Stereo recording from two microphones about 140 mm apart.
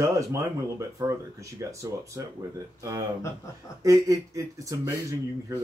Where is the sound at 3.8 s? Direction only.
25° right (ahead or behind).